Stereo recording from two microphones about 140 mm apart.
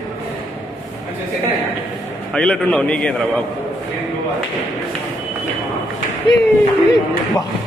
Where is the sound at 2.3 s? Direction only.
5° left (ahead or behind).